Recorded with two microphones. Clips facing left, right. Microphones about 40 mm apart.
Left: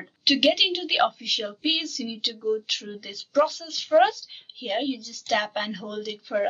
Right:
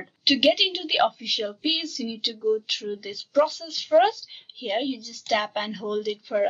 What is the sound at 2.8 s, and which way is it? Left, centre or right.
Speech, centre.